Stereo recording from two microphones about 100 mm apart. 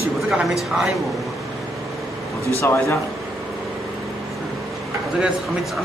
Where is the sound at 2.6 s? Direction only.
25° left (ahead or behind).